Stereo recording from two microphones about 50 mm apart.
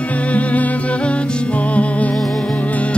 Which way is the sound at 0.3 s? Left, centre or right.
Left.